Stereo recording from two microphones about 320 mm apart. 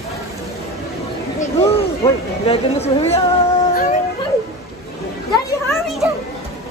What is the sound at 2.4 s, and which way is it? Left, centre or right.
Speech, centre.